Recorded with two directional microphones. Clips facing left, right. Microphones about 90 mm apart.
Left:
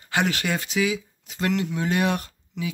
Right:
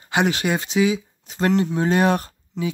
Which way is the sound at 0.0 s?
20° right (ahead or behind).